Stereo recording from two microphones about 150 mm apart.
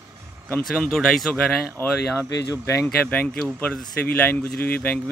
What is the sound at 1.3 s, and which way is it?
Speech, 15° left (ahead or behind).